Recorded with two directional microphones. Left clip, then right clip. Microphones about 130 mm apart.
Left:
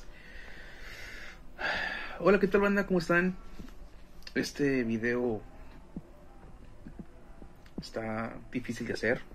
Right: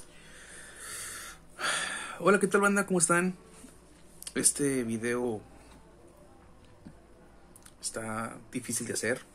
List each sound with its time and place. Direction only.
1.1 s a sound: 30° right (ahead or behind)
4.6 s speech: 25° right (ahead or behind)
7.8 s speech: 25° right (ahead or behind)